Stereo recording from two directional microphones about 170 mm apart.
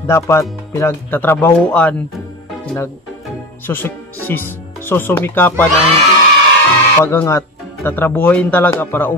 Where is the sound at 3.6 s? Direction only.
15° left (ahead or behind).